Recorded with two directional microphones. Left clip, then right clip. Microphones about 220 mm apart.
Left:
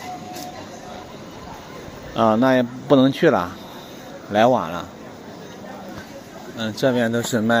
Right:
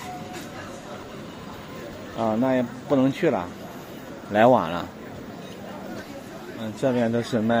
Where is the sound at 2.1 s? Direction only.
25° left (ahead or behind).